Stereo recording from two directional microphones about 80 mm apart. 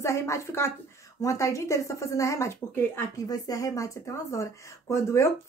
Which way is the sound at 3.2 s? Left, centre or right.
Left.